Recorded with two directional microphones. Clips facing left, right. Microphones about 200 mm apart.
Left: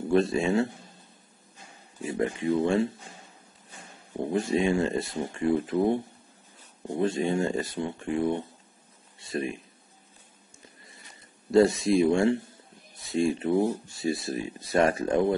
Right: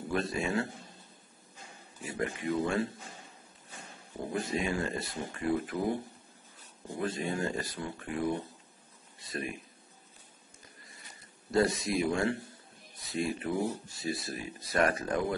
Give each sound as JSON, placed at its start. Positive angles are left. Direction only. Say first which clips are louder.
{"t": 0.1, "sound": "speech", "louder": "left 8 dB", "side_deg": 25}
{"t": 2.0, "sound": "speech", "louder": "left 7 dB", "side_deg": 25}
{"t": 4.3, "sound": "speech", "louder": "left 8 dB", "side_deg": 25}
{"t": 7.0, "sound": "speech", "louder": "left 7 dB", "side_deg": 25}
{"t": 11.5, "sound": "speech", "louder": "left 8 dB", "side_deg": 25}